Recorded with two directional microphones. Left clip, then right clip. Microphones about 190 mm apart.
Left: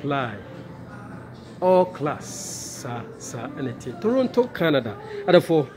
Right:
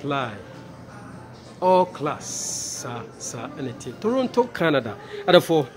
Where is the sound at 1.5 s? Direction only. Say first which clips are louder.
Even; 5° right (ahead or behind).